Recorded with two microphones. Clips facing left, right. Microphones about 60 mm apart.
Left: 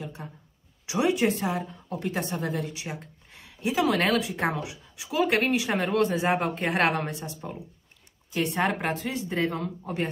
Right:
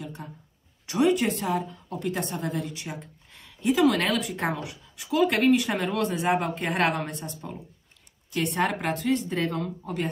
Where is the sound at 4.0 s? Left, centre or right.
Centre.